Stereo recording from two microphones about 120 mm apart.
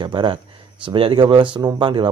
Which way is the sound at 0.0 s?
40° right (ahead or behind).